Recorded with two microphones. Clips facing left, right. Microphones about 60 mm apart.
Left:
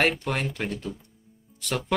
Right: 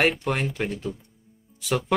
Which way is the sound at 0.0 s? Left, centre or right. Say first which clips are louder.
Right 2 dB; centre.